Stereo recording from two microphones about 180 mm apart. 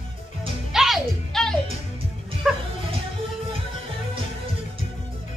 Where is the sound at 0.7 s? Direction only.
Centre (ahead or behind).